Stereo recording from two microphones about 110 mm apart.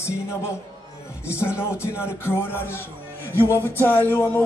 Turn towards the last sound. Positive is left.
turn(degrees=20)  # may be behind; listen again after turning